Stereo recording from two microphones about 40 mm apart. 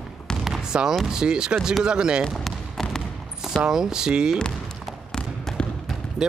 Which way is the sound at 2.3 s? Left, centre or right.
Centre.